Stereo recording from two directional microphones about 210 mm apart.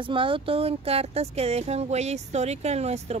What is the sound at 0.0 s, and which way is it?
Speech, 25° right (ahead or behind).